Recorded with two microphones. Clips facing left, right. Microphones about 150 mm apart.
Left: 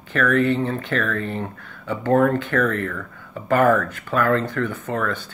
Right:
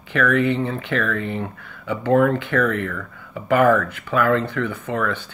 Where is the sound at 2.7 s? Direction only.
40° left (ahead or behind).